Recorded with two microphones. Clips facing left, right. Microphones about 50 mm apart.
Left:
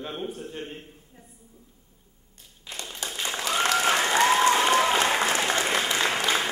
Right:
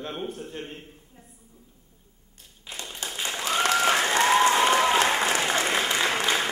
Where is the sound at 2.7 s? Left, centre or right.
Centre.